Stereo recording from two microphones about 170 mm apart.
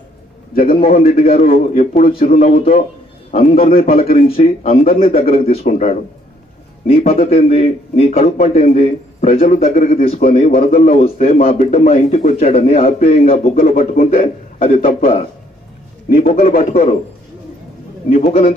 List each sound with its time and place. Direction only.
0.6 s speech: 55° left (ahead or behind)
0.8 s a man's voice: 40° left (ahead or behind); by 10.9 s 55° left (ahead or behind)
10.9 s a man's voice: 35° left (ahead or behind)
13.6 s speech: 55° left (ahead or behind)
14.6 s a man's voice: 40° left (ahead or behind)
16.1 s speech: 55° left (ahead or behind)
18.1 s speech: 55° left (ahead or behind)